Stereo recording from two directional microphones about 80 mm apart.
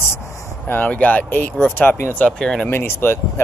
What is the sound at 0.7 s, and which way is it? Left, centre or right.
Speech, centre.